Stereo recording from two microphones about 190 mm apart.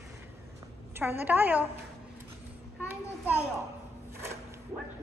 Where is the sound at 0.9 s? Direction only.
10° right (ahead or behind).